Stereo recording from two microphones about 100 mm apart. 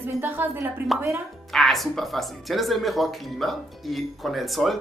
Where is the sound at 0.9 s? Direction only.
Centre (ahead or behind).